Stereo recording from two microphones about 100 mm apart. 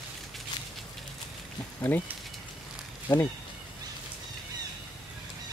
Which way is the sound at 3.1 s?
45° left (ahead or behind).